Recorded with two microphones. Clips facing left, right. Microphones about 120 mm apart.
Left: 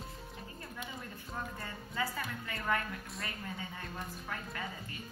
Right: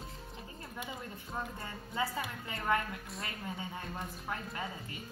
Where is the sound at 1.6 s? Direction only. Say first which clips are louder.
Right 1 dB; 20° right (ahead or behind).